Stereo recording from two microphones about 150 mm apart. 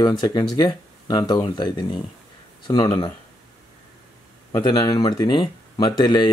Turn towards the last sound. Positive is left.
turn(degrees=30)  # may be behind; listen again after turning